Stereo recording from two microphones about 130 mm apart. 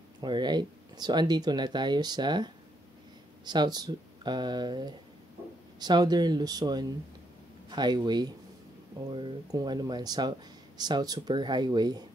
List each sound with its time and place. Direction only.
0.2 s speech: 35° right (ahead or behind)